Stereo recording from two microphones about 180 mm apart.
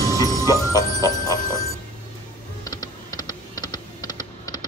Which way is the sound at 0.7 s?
20° left (ahead or behind).